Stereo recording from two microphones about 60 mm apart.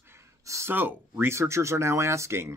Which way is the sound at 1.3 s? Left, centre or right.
Right.